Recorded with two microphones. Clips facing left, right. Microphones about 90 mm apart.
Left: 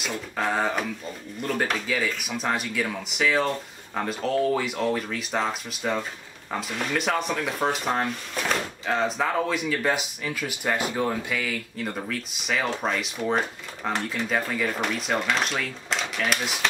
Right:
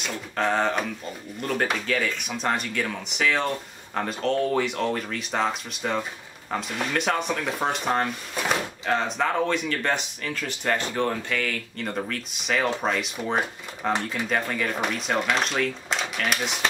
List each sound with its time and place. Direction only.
0.0 s speech: 5° left (ahead or behind)